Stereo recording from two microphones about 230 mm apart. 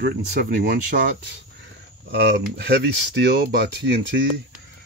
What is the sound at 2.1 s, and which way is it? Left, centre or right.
Speech, right.